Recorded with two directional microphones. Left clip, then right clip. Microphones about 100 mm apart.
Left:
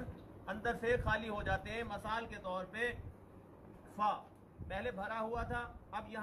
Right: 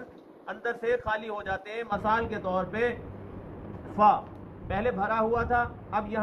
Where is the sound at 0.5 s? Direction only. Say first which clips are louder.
Right 7 dB; 15° right (ahead or behind).